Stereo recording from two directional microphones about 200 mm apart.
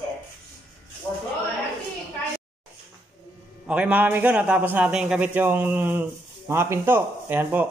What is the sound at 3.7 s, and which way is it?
A man's voice, 5° right (ahead or behind).